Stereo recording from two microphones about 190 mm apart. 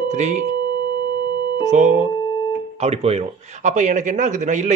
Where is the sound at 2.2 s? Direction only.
20° left (ahead or behind).